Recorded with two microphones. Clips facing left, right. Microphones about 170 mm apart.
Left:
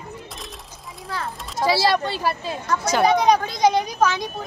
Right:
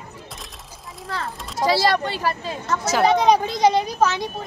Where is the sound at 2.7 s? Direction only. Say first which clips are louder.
Even; 5° right (ahead or behind).